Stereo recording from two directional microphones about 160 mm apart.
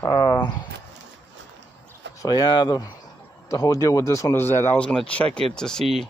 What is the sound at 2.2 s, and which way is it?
Speech, 25° left (ahead or behind).